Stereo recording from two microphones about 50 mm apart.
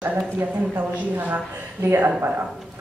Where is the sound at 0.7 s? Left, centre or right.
Right.